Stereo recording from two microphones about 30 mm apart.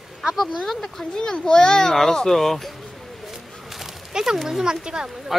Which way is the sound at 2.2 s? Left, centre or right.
Centre.